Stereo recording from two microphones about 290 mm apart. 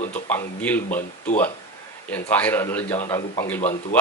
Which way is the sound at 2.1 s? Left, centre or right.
Centre.